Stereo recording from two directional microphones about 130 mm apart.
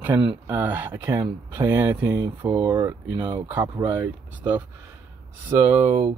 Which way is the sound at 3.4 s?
15° right (ahead or behind).